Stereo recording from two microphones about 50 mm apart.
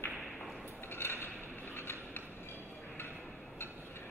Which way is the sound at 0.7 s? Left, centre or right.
Left.